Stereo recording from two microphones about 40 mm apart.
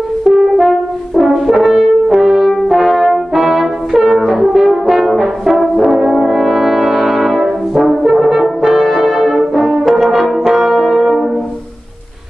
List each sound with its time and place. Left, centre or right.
0.3 s french horn: centre
0.6 s french horn: centre
2.7 s brass instrument: centre
4.3 s french horn: centre
5.4 s brass instrument: centre
8.8 s french horn: centre
10.4 s brass instrument: centre